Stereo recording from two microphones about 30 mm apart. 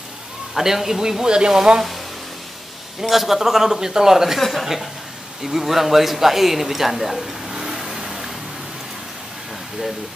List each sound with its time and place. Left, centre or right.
0.6 s a man's voice: centre
3.0 s a man's voice: centre
4.4 s a man's voice: centre
7.4 s vehicle: centre